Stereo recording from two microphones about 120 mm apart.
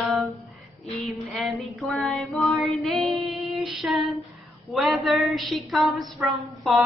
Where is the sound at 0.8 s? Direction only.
Centre (ahead or behind).